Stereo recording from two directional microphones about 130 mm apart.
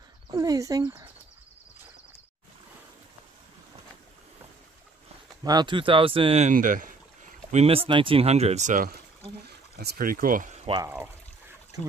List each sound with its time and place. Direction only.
0.3 s speech: 25° right (ahead or behind)
5.4 s speech: 30° right (ahead or behind)
6.4 s speech: 90° right
7.5 s speech: 50° right (ahead or behind); by 8.9 s 80° right
10.0 s speech: 90° right